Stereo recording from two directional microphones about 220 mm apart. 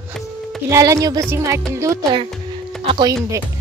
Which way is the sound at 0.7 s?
15° right (ahead or behind).